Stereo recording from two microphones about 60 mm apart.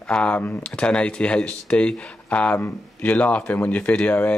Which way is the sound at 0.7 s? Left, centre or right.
Centre.